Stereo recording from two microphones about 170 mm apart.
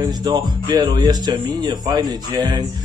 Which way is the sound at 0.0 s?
25° right (ahead or behind).